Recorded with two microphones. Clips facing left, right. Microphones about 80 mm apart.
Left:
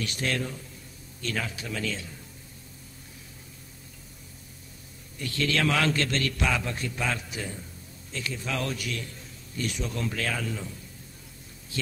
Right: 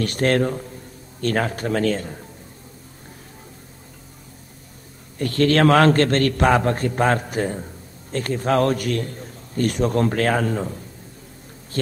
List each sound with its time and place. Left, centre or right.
0.0 s a man's voice: right
5.2 s a man's voice: right